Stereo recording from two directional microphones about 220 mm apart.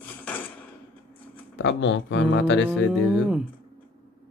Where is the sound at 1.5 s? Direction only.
55° left (ahead or behind).